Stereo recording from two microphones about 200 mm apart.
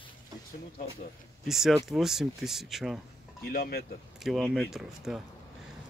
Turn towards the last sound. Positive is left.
turn(degrees=0)  # may be behind; listen again after turning